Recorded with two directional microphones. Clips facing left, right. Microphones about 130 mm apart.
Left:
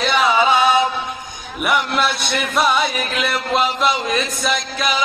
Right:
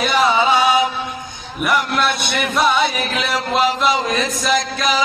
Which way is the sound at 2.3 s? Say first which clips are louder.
Even; centre (ahead or behind).